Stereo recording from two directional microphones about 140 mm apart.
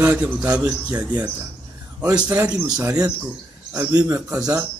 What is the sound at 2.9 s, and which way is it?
A man's voice, 25° right (ahead or behind).